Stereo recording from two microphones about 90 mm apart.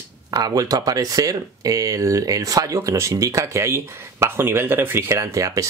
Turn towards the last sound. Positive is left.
turn(degrees=-35)  # may be behind; listen again after turning